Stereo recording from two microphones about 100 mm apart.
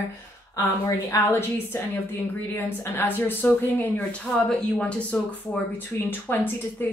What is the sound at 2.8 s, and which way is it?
Speech, 20° left (ahead or behind).